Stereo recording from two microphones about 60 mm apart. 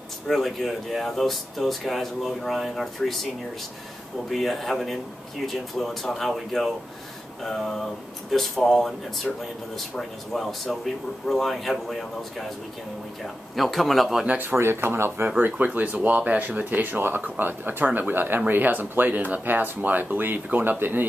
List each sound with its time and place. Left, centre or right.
0.3 s speech: centre
4.3 s speech: centre
14.2 s speech: right
14.5 s speech: right
15.2 s speech: right